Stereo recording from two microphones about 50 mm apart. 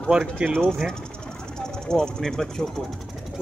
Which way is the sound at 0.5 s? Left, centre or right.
Centre.